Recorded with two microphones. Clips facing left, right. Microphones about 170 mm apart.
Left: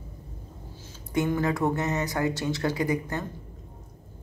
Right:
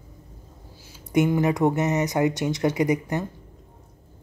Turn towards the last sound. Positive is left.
turn(degrees=-20)  # may be behind; listen again after turning